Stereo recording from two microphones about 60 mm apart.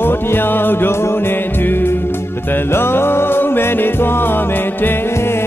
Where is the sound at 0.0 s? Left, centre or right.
Left.